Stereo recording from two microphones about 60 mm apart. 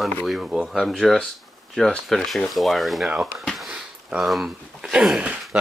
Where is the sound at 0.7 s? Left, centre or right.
Centre.